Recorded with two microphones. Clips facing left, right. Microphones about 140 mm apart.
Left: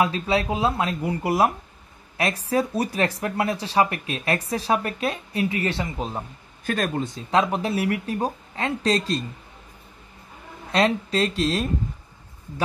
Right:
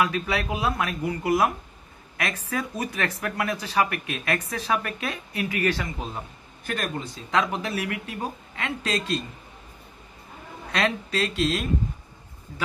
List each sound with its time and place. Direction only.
0.0 s speech: 25° left (ahead or behind)
7.2 s speech: 30° left (ahead or behind)
10.7 s speech: 30° left (ahead or behind)